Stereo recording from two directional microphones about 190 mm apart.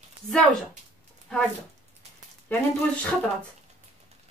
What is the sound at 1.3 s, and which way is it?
Speech, 5° left (ahead or behind).